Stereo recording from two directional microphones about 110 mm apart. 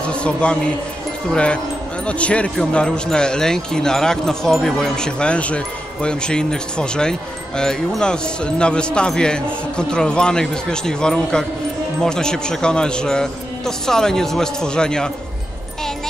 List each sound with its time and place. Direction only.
0.0 s speech: 10° left (ahead or behind)